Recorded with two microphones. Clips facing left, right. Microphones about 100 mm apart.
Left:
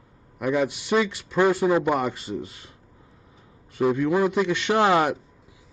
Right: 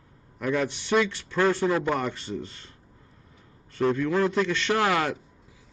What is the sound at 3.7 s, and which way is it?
Speech, 10° left (ahead or behind).